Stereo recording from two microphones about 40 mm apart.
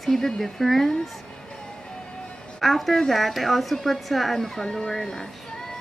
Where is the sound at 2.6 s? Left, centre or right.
Centre.